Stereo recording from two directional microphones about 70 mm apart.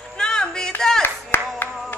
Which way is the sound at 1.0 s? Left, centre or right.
Left.